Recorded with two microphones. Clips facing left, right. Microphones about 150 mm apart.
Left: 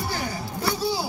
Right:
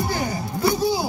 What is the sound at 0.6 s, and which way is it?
Music, 15° right (ahead or behind).